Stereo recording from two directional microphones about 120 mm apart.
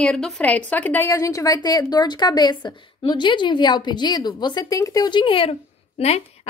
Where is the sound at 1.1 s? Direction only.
30° left (ahead or behind).